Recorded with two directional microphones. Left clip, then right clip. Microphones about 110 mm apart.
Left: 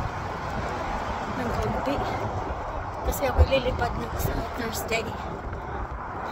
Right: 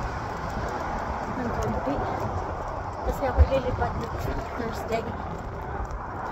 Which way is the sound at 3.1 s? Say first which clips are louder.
Left 2 dB; 35° left (ahead or behind).